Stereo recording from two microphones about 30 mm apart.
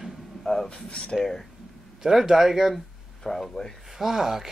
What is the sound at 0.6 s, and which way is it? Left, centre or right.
Speech, left.